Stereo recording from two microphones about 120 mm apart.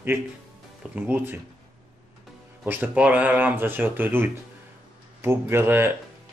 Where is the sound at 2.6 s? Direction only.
15° right (ahead or behind).